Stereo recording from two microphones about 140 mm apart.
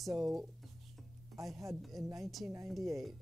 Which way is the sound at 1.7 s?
Centre (ahead or behind).